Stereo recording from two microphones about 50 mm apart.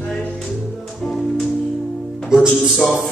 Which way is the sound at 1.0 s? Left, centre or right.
Centre.